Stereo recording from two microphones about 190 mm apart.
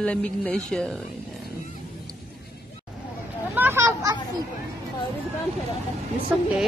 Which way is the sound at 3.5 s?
10° right (ahead or behind).